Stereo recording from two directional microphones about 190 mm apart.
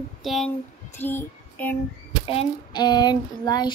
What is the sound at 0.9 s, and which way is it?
Child singing, 10° left (ahead or behind).